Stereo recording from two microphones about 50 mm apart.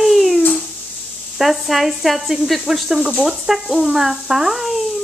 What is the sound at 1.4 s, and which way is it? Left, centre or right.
Speech, centre.